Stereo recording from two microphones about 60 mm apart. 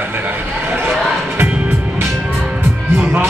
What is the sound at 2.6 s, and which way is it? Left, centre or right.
Music, right.